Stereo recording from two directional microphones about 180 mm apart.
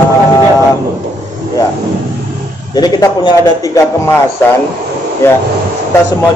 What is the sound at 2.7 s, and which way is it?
A man's voice, 20° left (ahead or behind).